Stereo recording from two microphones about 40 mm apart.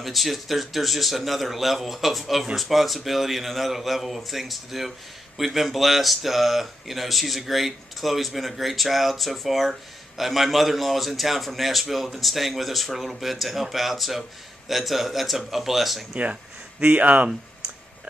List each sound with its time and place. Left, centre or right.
0.0 s speech: centre
16.8 s speech: right